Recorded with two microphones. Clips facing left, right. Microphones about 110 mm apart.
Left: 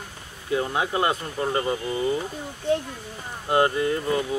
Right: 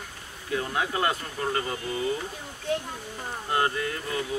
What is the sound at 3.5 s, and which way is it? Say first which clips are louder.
Speech: left 6 dB; 20° left (ahead or behind).